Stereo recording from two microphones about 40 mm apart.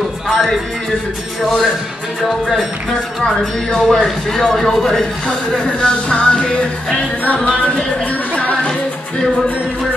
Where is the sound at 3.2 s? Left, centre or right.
Centre.